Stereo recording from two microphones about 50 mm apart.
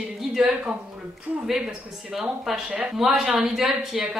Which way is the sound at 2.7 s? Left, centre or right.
Right.